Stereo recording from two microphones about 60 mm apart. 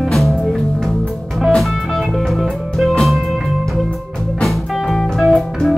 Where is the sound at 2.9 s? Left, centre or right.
Centre.